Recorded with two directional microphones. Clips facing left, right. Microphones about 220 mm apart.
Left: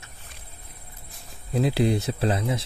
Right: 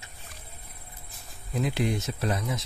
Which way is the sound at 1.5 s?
35° left (ahead or behind).